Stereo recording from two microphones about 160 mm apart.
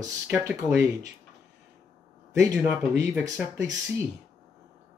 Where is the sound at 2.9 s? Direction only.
15° right (ahead or behind).